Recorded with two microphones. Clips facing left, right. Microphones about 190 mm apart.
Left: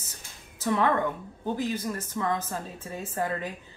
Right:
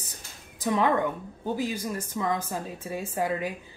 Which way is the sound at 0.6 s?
15° right (ahead or behind).